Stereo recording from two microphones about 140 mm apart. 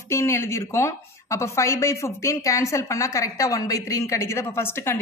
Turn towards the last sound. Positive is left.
turn(degrees=15)  # may be behind; listen again after turning